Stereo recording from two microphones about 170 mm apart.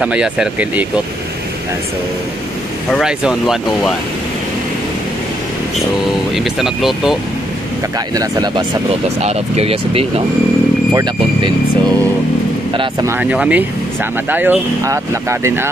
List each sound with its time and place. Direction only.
0.0 s speech: 5° right (ahead or behind)
2.9 s speech: 5° right (ahead or behind)
6.3 s speech: centre (ahead or behind)
8.1 s speech: 25° right (ahead or behind)
9.2 s speech: 35° right (ahead or behind)
10.9 s speech: 20° right (ahead or behind)
13.0 s speech: 10° right (ahead or behind)